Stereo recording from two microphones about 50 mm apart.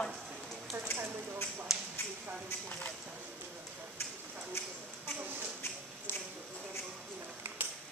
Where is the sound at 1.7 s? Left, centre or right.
Centre.